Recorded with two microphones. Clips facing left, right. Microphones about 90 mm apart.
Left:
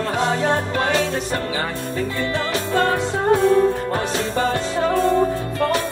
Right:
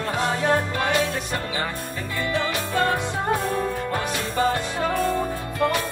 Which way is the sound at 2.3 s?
25° left (ahead or behind).